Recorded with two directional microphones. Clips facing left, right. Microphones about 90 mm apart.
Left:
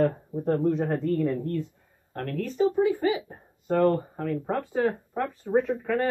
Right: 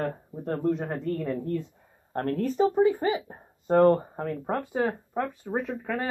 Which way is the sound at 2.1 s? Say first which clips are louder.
Right 2 dB; 30° right (ahead or behind).